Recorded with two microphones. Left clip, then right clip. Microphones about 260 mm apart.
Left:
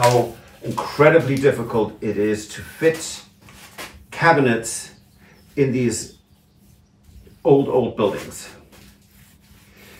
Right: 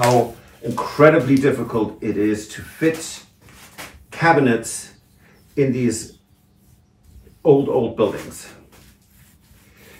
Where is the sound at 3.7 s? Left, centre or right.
Centre.